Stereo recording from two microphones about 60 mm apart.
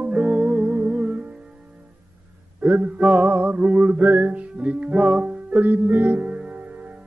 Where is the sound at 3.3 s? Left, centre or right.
Right.